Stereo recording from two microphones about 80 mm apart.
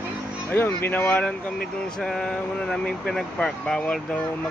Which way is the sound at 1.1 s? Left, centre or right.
Centre.